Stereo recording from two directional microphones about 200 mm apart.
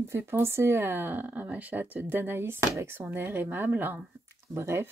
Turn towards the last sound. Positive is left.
turn(degrees=-15)  # may be behind; listen again after turning